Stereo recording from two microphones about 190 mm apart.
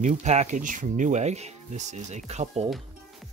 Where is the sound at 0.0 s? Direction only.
40° right (ahead or behind).